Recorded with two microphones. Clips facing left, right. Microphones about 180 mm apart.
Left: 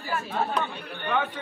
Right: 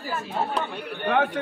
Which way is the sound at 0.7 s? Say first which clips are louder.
Right 4 dB; 55° right (ahead or behind).